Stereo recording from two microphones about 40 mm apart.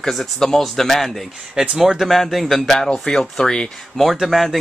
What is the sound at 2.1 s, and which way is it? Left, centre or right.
Speech, centre.